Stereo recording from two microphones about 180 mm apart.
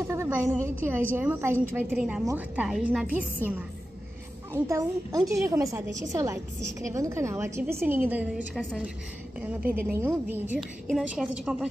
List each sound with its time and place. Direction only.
0.0 s a woman's voice: 15° right (ahead or behind)